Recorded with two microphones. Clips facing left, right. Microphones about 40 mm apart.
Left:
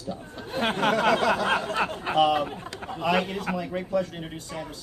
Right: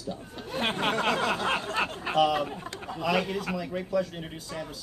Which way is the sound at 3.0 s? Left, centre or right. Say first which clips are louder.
Left 2 dB; left.